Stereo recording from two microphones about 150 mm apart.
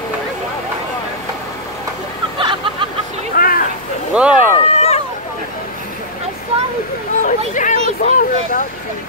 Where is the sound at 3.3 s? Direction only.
70° left (ahead or behind).